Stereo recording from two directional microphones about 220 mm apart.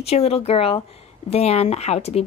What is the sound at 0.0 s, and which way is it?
A woman's voice, 25° left (ahead or behind).